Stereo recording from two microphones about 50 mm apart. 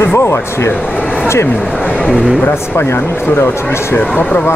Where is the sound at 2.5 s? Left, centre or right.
Left.